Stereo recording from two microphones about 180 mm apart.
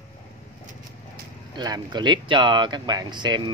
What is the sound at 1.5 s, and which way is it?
Speech, 25° right (ahead or behind).